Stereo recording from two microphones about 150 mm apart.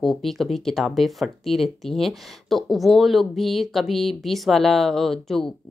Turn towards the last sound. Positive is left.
turn(degrees=0)  # may be behind; listen again after turning